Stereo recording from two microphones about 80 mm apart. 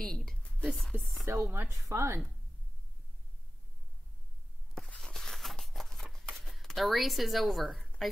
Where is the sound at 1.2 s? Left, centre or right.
Right.